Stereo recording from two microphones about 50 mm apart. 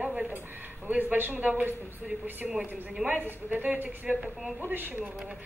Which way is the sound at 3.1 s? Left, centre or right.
Right.